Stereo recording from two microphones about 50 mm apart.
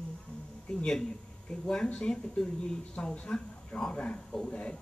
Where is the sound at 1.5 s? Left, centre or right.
Centre.